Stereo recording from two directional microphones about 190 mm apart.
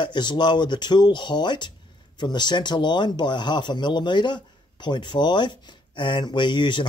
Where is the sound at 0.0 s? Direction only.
25° left (ahead or behind).